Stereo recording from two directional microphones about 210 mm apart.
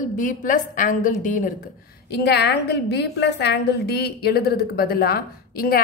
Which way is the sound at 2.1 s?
50° left (ahead or behind).